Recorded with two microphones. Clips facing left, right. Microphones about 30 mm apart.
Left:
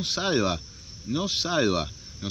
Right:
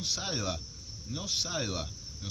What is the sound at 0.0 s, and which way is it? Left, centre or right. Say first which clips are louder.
Speech: left 9 dB; left.